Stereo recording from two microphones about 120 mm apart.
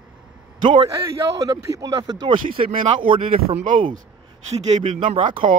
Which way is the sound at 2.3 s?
45° right (ahead or behind).